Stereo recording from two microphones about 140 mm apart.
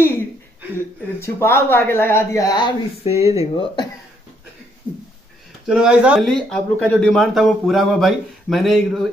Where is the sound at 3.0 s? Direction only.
45° left (ahead or behind).